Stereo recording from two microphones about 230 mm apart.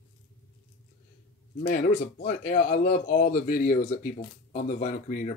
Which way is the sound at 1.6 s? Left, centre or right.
Left.